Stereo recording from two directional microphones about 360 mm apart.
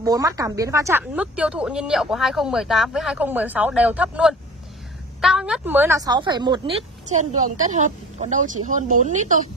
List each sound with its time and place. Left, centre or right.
0.0 s a woman's voice: centre